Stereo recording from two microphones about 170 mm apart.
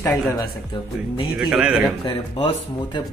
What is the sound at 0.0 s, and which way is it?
Speech, 20° left (ahead or behind).